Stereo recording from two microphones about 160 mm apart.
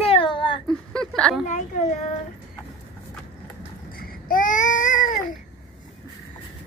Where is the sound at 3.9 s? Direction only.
65° left (ahead or behind).